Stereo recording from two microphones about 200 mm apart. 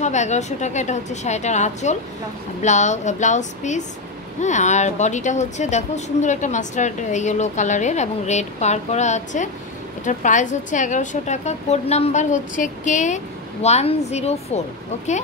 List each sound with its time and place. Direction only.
0.0 s speech: 35° left (ahead or behind)